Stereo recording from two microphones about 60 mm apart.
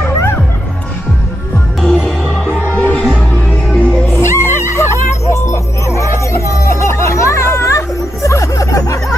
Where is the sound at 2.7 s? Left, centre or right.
Left.